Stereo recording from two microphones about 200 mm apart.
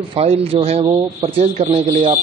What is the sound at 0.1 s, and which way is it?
Speech, 30° right (ahead or behind).